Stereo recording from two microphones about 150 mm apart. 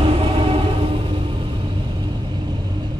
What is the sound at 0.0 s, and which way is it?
Music, 40° right (ahead or behind).